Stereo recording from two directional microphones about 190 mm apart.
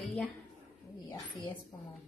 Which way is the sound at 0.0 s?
Centre (ahead or behind).